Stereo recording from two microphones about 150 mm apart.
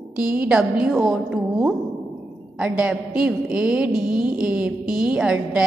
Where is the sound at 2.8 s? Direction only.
5° right (ahead or behind).